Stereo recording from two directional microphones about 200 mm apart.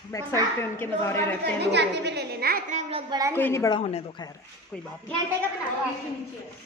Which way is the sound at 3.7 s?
30° left (ahead or behind).